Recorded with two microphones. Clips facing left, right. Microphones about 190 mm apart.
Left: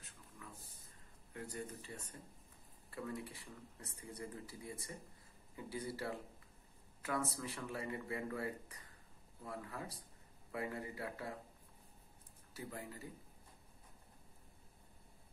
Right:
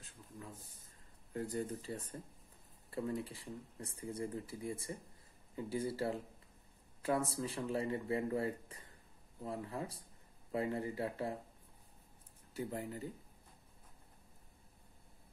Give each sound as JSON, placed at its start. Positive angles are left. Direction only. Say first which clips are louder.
{"t": 1.3, "sound": "speech", "louder": "right 7 dB", "side_deg": -35}
{"t": 12.5, "sound": "speech", "louder": "right 7 dB", "side_deg": -25}